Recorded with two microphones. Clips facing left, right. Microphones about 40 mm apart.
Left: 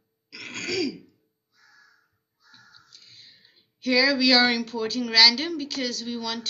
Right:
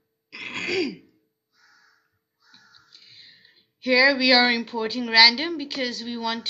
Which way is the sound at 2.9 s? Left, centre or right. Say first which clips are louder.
Right 3 dB; centre.